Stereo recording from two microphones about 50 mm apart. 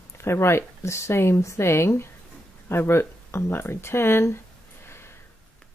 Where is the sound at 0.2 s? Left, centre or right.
Left.